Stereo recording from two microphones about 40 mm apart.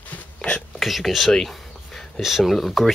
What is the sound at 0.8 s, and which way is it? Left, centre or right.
Speech, centre.